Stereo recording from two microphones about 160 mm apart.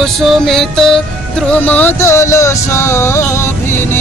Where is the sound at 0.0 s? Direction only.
Centre (ahead or behind).